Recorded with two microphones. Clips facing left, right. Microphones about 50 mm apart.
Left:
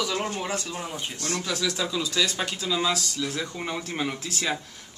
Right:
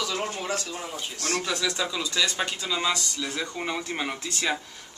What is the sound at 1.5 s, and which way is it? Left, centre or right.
Speech, centre.